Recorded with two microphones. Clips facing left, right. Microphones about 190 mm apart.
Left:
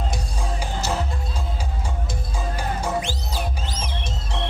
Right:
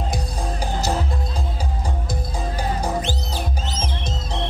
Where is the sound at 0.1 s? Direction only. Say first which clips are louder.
Right 3 dB; 35° right (ahead or behind).